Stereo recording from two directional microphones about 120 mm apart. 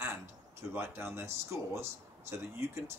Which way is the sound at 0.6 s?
20° right (ahead or behind).